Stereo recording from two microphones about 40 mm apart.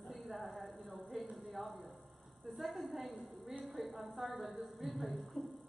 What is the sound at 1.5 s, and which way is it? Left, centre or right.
A woman's voice, centre.